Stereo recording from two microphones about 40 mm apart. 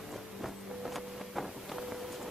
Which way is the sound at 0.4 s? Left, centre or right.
Centre.